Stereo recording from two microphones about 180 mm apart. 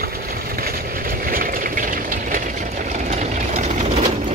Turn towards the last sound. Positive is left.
turn(degrees=-40)  # may be behind; listen again after turning